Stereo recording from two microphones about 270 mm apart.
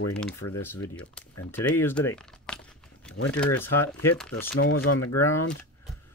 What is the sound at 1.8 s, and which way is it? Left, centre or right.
Crumpling, centre.